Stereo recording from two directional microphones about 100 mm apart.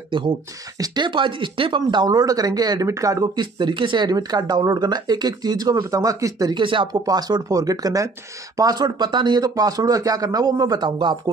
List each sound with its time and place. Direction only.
0.1 s speech: 55° right (ahead or behind)
0.7 s speech: 45° right (ahead or behind)
3.5 s speech: 55° right (ahead or behind); by 6.5 s 35° right (ahead or behind)
6.5 s speech: 55° right (ahead or behind)
6.9 s speech: 40° right (ahead or behind)